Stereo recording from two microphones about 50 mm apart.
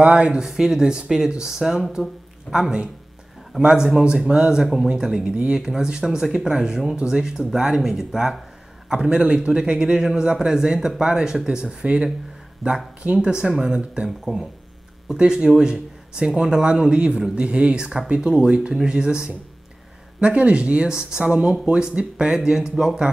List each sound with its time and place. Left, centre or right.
0.0 s speech: right
0.3 s a man's voice: centre
12.6 s speech: centre
13.0 s a man's voice: centre
14.0 s speech: centre
15.1 s a man's voice: centre